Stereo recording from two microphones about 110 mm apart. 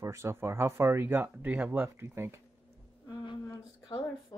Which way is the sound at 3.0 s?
45° left (ahead or behind).